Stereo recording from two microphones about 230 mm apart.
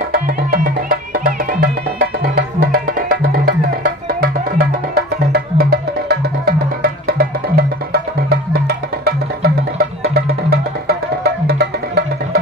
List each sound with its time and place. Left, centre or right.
0.1 s music: right
10.5 s music: right